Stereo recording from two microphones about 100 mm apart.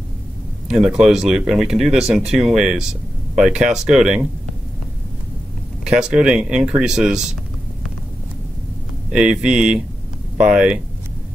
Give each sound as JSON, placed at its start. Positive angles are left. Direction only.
{"t": 0.7, "sound": "speech", "side_deg": -5}
{"t": 5.9, "sound": "speech", "side_deg": -10}
{"t": 9.1, "sound": "speech", "side_deg": -10}